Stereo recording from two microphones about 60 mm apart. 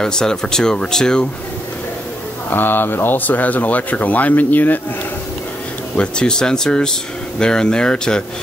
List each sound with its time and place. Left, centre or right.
0.0 s speech: centre
2.5 s speech: left
5.9 s speech: centre